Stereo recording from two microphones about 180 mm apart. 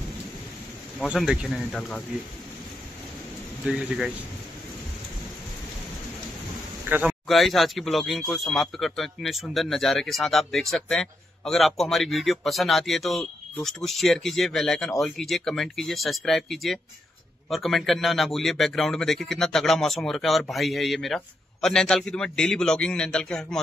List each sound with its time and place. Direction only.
1.0 s speech: 5° right (ahead or behind)
3.6 s speech: 5° right (ahead or behind)
6.9 s speech: 5° right (ahead or behind)